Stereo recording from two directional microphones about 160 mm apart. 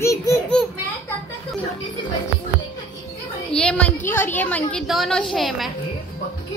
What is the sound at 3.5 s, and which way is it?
A woman's voice, 5° left (ahead or behind).